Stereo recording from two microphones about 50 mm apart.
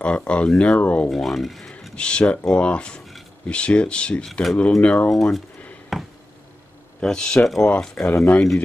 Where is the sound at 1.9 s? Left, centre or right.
Left.